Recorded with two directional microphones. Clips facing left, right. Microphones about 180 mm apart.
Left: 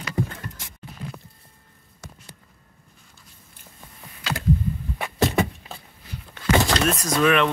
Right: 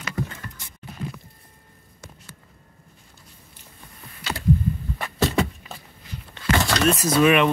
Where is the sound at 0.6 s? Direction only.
90° left.